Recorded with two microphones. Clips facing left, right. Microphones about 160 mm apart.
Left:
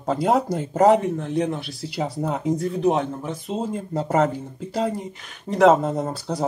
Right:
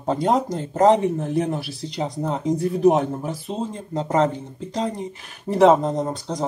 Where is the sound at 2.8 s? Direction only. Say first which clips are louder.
Right 5 dB; 40° right (ahead or behind).